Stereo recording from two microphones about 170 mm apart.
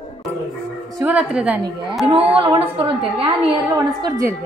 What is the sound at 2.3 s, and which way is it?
Speech, 35° right (ahead or behind).